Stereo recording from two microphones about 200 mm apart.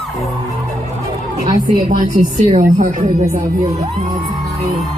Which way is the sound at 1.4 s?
20° right (ahead or behind).